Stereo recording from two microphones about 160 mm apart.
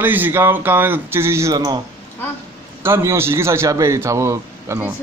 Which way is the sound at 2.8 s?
15° right (ahead or behind).